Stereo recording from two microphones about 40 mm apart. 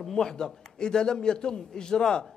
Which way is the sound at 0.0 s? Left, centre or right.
Centre.